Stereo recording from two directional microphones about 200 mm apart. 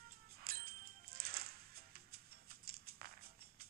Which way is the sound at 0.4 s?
50° right (ahead or behind).